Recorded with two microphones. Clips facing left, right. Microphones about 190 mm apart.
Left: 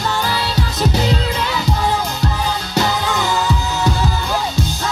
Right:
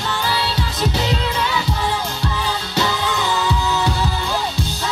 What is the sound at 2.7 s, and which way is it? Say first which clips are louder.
Music: left 2 dB; 45° left (ahead or behind).